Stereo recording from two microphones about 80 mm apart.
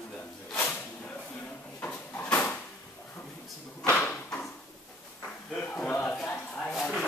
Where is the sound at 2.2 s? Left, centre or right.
Centre.